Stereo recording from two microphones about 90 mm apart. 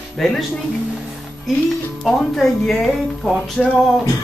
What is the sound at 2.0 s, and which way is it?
Speech, 5° left (ahead or behind).